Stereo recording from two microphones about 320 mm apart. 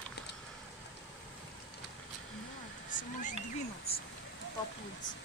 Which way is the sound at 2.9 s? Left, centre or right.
Left.